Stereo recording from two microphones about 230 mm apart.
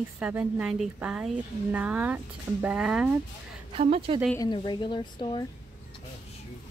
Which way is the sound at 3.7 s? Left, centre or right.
Right.